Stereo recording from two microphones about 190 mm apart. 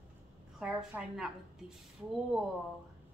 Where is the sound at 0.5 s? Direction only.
5° right (ahead or behind).